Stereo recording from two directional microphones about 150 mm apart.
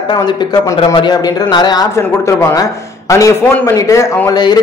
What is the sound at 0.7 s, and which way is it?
A man's voice, 30° left (ahead or behind).